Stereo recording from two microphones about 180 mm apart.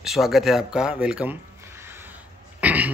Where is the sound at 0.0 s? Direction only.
Centre (ahead or behind).